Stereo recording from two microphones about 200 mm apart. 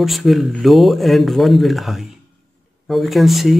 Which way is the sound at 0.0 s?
Centre (ahead or behind).